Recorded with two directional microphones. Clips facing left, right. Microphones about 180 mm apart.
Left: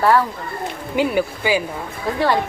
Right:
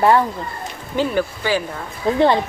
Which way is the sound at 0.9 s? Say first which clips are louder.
Left 1 dB; 10° left (ahead or behind).